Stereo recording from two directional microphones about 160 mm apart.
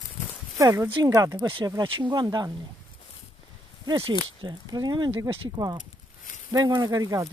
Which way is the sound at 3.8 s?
35° right (ahead or behind).